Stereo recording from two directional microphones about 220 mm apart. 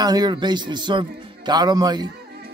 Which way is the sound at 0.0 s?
20° right (ahead or behind).